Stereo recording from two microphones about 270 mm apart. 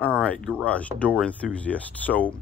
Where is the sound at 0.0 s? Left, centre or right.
Centre.